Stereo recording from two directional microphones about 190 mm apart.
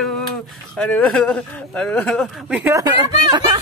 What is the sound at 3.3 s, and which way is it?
Music, 25° right (ahead or behind).